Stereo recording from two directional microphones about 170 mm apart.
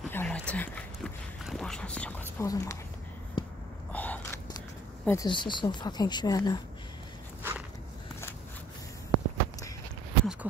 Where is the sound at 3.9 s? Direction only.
10° left (ahead or behind).